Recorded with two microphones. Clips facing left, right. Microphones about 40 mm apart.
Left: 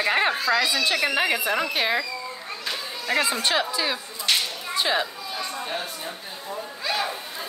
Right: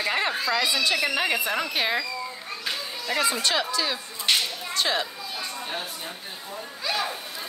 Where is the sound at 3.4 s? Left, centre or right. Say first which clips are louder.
Left 1 dB; centre.